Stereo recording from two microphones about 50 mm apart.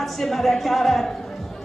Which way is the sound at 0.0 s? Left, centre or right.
Centre.